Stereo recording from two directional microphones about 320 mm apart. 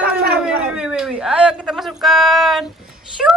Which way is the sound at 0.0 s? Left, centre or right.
Right.